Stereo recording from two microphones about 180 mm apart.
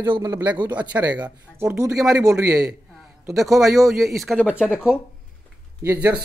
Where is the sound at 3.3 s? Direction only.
Centre (ahead or behind).